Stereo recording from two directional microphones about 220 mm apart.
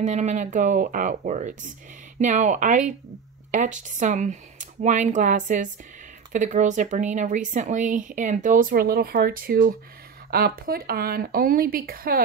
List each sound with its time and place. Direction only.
0.0 s speech: 30° right (ahead or behind)